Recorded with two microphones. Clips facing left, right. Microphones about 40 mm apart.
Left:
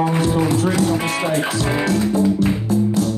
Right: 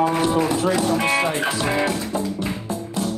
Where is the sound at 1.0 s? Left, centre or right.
Centre.